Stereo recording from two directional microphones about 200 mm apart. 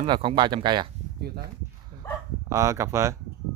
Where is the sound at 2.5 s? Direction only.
15° right (ahead or behind).